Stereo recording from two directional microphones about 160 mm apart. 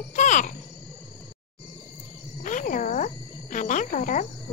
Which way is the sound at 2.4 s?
55° left (ahead or behind).